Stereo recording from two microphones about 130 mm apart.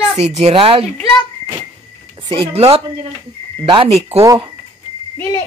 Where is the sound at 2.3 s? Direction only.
50° right (ahead or behind).